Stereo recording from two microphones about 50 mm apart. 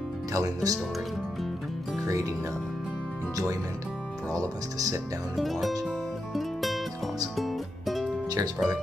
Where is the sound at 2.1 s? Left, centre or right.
Right.